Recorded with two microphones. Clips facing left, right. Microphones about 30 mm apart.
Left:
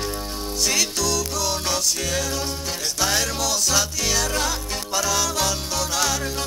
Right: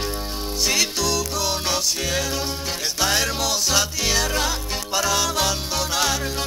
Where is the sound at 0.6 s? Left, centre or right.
Centre.